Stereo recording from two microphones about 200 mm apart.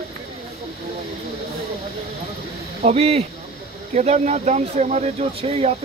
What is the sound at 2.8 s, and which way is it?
Speech, 30° right (ahead or behind).